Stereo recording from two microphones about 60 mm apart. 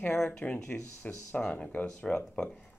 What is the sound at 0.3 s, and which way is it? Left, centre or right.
Speech, centre.